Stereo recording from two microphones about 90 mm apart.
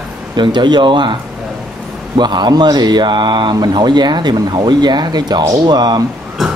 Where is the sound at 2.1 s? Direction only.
55° right (ahead or behind).